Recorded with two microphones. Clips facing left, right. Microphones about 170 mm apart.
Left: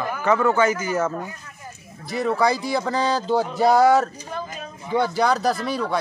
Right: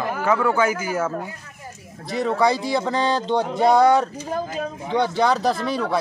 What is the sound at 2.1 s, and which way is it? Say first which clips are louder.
Speech: right 1 dB; centre (ahead or behind).